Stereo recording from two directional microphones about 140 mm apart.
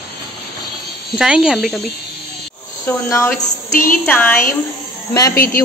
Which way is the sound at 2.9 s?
15° left (ahead or behind).